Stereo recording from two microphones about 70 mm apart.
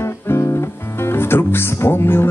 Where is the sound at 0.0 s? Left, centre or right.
Left.